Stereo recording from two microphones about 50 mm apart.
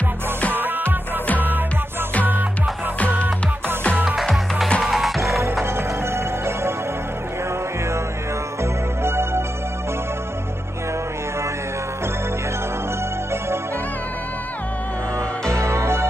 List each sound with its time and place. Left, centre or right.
0.6 s music: right
4.2 s music: centre
5.5 s music: right
9.0 s music: right
15.5 s music: right